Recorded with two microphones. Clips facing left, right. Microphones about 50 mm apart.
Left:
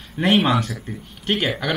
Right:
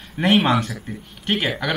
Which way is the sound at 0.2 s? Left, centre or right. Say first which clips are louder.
Even; centre.